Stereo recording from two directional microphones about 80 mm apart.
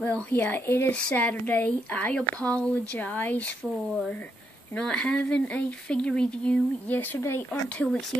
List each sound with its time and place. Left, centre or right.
0.0 s speech: left
4.7 s speech: centre
7.2 s speech: left
7.8 s speech: centre